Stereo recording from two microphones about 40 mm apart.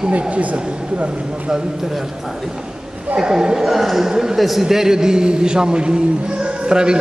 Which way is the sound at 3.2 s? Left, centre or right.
Centre.